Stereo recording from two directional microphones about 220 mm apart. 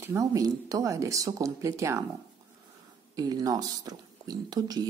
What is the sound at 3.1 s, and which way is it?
Speech, 15° right (ahead or behind).